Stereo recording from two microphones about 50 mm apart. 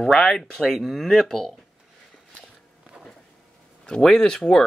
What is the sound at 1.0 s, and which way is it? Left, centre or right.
Speech, centre.